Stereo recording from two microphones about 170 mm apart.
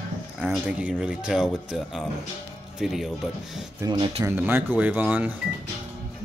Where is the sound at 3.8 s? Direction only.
20° right (ahead or behind).